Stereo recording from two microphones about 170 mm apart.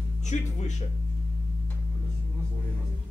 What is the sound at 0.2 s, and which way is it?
Speech, 45° left (ahead or behind).